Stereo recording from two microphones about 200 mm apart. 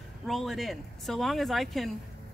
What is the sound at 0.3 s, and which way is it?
Speech, centre (ahead or behind).